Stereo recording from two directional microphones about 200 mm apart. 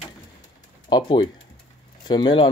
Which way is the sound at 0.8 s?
25° left (ahead or behind).